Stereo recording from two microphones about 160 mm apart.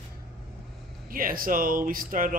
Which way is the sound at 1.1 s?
60° right (ahead or behind).